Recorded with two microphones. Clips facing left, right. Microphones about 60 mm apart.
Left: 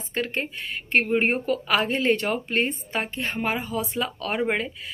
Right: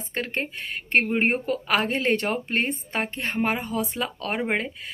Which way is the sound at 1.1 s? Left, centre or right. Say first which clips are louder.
Left 1 dB; right.